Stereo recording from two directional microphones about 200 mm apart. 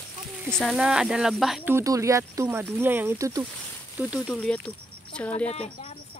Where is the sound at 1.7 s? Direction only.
15° right (ahead or behind).